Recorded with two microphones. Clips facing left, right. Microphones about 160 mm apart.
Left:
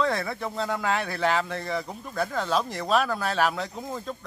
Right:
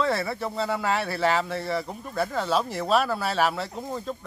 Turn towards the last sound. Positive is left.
turn(degrees=-5)  # may be behind; listen again after turning